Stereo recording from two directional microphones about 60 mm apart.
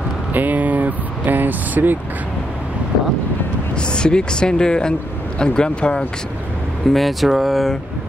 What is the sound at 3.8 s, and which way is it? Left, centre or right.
Speech, centre.